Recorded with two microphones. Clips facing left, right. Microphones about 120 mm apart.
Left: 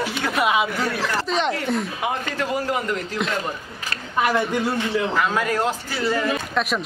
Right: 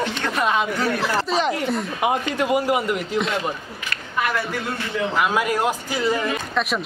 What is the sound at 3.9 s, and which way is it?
Speech, 30° left (ahead or behind).